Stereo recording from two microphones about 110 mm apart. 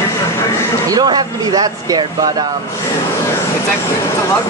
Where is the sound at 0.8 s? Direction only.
35° right (ahead or behind).